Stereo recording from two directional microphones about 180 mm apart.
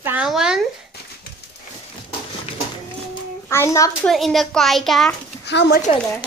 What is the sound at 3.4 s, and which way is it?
Speech, 15° left (ahead or behind).